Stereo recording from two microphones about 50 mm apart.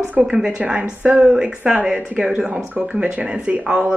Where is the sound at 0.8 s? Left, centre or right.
Right.